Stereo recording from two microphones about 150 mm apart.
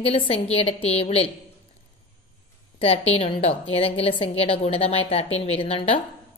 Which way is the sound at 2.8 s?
40° left (ahead or behind).